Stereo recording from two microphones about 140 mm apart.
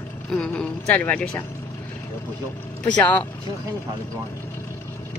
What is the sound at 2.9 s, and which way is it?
Speech, 10° left (ahead or behind).